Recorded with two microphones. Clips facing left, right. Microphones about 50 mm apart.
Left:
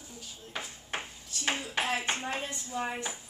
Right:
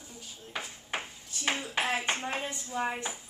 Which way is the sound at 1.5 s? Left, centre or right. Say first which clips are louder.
Right 1 dB; centre.